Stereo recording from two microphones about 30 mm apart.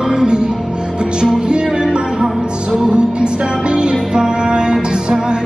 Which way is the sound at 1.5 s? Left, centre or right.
Right.